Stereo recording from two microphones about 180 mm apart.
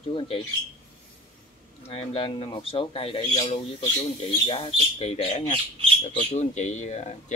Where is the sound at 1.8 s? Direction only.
30° left (ahead or behind).